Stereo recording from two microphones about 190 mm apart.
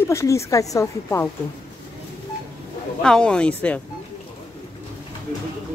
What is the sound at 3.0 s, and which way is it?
Speech, 5° left (ahead or behind).